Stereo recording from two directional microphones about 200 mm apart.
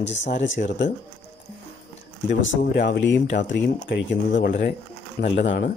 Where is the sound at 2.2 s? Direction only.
65° left (ahead or behind); by 4.8 s 50° left (ahead or behind).